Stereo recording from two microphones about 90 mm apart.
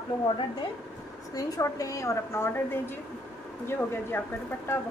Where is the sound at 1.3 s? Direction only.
35° left (ahead or behind).